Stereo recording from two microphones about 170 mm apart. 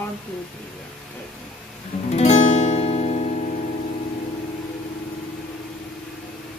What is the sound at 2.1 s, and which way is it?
Music, 45° left (ahead or behind).